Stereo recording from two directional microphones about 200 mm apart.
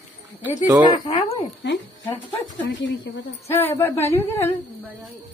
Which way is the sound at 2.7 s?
65° left (ahead or behind).